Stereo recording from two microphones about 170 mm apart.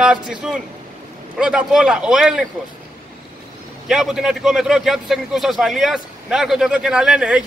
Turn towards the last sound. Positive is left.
turn(degrees=-5)  # may be behind; listen again after turning